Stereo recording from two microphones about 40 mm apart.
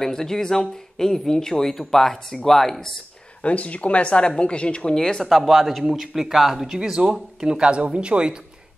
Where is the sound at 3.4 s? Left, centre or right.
Left; by 5.2 s centre.